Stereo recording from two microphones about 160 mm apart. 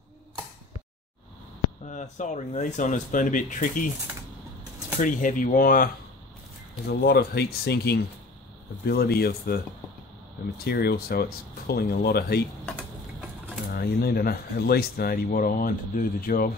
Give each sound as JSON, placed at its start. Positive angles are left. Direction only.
{"t": 1.9, "sound": "speech", "side_deg": 50}
{"t": 5.0, "sound": "speech", "side_deg": 60}
{"t": 6.9, "sound": "speech", "side_deg": 70}
{"t": 10.6, "sound": "speech", "side_deg": 75}
{"t": 13.7, "sound": "speech", "side_deg": 75}